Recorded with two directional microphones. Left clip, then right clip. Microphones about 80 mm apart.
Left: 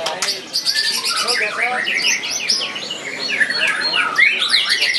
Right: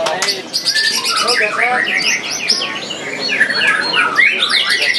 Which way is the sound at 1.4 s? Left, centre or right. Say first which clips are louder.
Right 5 dB; centre.